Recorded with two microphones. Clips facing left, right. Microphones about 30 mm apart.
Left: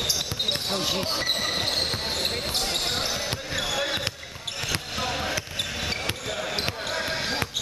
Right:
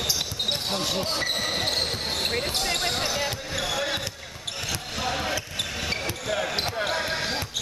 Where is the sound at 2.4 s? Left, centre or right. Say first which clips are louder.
Right 1 dB; centre.